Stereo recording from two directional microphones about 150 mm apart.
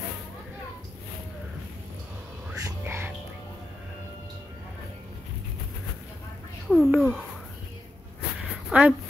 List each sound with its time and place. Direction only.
2.6 s music: 15° right (ahead or behind)
6.7 s speech: centre (ahead or behind)
8.6 s a sound: 5° right (ahead or behind)